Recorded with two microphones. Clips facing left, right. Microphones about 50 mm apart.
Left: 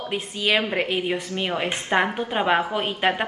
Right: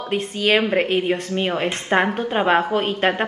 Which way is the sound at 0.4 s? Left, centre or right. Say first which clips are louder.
Right 4 dB; right.